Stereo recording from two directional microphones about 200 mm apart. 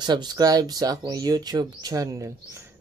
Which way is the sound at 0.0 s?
20° right (ahead or behind).